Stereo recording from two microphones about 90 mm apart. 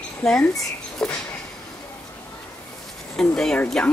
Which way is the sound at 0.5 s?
5° left (ahead or behind).